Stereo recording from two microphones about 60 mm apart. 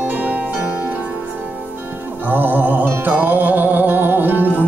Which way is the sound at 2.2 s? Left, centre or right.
Right.